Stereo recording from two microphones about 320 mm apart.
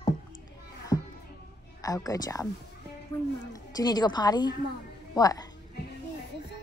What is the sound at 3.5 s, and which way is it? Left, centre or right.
A woman's voice, centre.